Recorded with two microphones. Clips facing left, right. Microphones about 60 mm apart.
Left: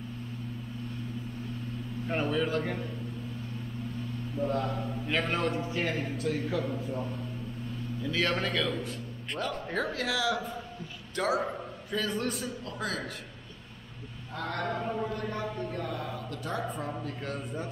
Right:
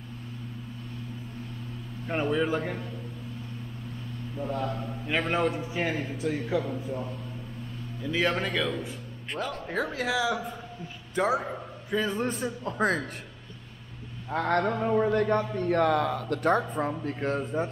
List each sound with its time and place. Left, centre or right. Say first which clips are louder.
2.0 s a man's voice: right 3 dB; centre
4.4 s a man's voice: left 1 dB; centre
5.1 s a man's voice: right 3 dB; centre
8.0 s a man's voice: right 3 dB; centre
12.7 s speech: right 9 dB; right
14.3 s a man's voice: right 9 dB; right
14.7 s speech: right 6 dB; right
15.0 s a man's voice: right 9 dB; right
17.0 s speech: right 7 dB; right